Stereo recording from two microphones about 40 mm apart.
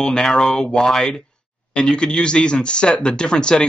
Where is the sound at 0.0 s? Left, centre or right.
Centre.